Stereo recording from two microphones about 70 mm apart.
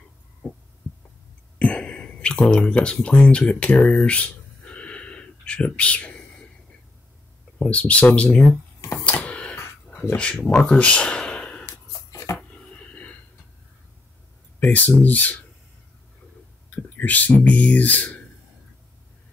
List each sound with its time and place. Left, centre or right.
0.4 s heart sounds: centre
1.6 s a sound: centre
7.7 s speech: centre
9.2 s a sound: centre
9.8 s speech: centre
12.1 s dishes: left
12.4 s a sound: centre
14.6 s speech: left
16.7 s speech: left